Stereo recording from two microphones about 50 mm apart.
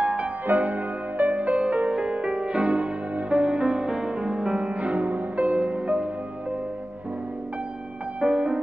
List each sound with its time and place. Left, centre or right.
0.0 s music: right
8.2 s music: centre